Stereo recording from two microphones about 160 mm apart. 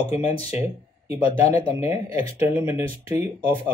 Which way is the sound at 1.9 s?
15° right (ahead or behind).